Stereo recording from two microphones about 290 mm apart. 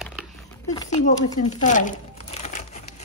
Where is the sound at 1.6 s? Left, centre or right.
Left.